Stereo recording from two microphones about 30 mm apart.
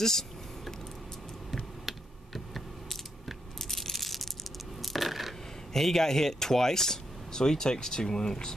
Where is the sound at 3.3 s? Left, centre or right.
Centre.